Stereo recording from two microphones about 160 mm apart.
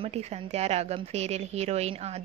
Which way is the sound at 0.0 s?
40° right (ahead or behind).